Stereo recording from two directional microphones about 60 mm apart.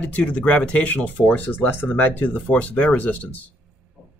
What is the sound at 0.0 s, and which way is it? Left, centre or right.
Speech, left.